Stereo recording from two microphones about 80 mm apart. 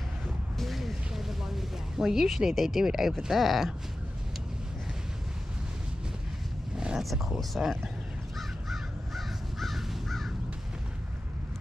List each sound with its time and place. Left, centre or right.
0.6 s a sound: centre
7.0 s speech: centre
8.4 s crow: centre